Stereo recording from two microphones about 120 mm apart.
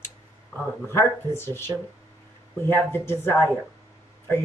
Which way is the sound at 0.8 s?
20° left (ahead or behind).